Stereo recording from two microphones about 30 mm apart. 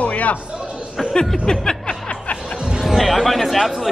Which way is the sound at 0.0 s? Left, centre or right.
Left.